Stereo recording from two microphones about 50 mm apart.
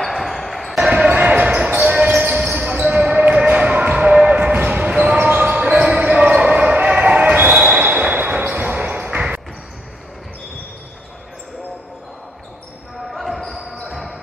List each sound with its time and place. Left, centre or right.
0.0 s basketball bounce: centre
1.0 s basketball bounce: right
3.0 s music: right
13.1 s basketball bounce: centre